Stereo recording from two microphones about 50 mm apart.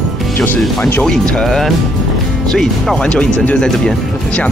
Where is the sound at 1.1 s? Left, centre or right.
Centre.